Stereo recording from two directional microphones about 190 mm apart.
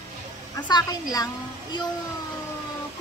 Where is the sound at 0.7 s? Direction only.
20° left (ahead or behind).